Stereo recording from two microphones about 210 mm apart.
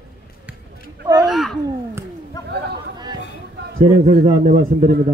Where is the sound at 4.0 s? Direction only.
35° right (ahead or behind).